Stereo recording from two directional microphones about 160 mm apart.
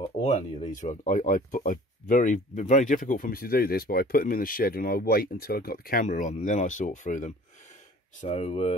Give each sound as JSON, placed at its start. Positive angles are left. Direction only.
{"t": 0.2, "sound": "speech", "side_deg": 40}